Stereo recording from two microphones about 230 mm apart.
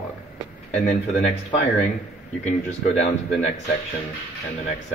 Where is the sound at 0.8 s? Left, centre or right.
Left.